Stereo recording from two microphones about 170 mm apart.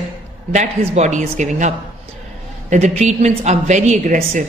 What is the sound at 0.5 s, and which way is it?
A woman's voice, 45° right (ahead or behind).